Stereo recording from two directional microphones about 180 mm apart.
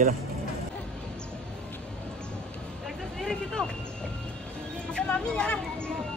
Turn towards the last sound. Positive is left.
turn(degrees=5)  # may be behind; listen again after turning